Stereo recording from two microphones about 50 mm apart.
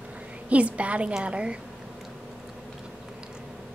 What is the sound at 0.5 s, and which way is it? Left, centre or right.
A woman's voice, right.